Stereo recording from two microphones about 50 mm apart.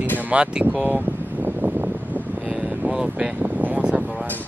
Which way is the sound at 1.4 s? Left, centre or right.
Right.